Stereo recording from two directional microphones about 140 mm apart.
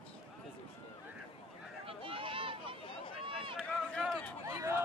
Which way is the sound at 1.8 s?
40° right (ahead or behind).